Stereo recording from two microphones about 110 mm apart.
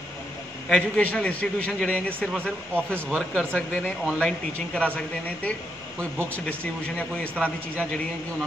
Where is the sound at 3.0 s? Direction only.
5° right (ahead or behind).